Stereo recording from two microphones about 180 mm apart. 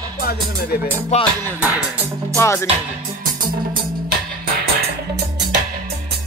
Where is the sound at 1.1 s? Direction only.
40° left (ahead or behind).